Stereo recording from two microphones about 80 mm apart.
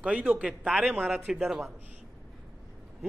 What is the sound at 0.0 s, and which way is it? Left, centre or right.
A man's voice, centre.